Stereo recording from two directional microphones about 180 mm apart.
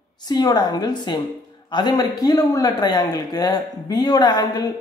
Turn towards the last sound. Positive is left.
turn(degrees=20)  # may be behind; listen again after turning